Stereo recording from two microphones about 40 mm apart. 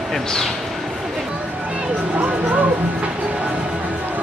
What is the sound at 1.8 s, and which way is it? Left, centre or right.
Music, right.